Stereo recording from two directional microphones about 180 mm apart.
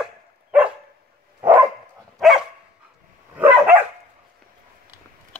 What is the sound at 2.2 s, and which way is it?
Dog, centre (ahead or behind).